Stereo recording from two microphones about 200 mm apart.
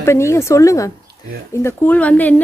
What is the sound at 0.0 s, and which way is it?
Speech, 15° left (ahead or behind).